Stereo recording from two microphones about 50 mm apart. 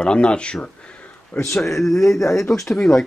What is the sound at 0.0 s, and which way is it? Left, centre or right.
Speech, centre.